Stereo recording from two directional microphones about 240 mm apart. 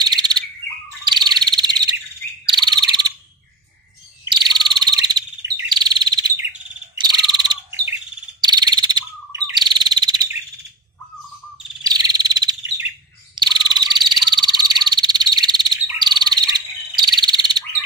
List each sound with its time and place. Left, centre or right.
0.0 s bird: centre
1.0 s frog: centre
2.4 s bird: centre
4.3 s frog: centre
5.7 s chirp: centre
7.0 s bird: centre
11.8 s cricket: centre
13.3 s frog: centre